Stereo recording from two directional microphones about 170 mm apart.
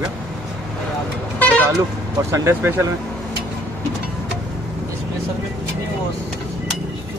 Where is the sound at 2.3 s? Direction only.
15° right (ahead or behind).